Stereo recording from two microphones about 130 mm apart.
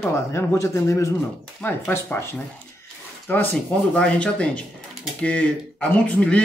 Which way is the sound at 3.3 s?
15° left (ahead or behind).